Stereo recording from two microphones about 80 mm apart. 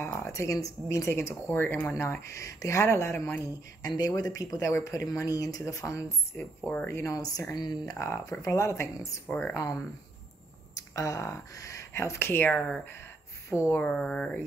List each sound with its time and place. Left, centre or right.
0.0 s speech: left
2.3 s speech: left
3.8 s speech: left
6.3 s speech: left
6.9 s speech: left
7.2 s speech: left
11.0 s speech: left
13.7 s speech: centre